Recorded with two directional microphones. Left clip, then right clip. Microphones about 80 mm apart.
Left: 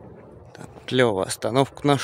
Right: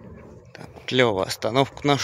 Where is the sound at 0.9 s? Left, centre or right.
Left.